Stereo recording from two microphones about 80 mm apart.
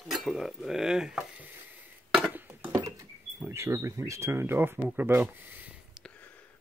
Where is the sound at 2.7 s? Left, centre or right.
Right.